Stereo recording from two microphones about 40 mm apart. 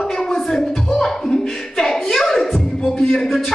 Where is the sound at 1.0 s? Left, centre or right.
Centre.